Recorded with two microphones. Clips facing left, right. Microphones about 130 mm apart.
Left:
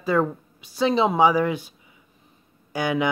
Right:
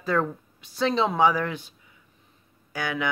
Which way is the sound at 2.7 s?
15° left (ahead or behind).